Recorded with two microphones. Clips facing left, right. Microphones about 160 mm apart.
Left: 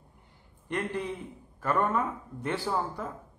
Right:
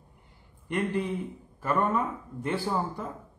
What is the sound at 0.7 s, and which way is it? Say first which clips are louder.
Speech: right 3 dB; 10° right (ahead or behind).